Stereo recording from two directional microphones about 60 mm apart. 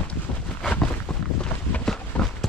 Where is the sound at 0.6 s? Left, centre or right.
Centre.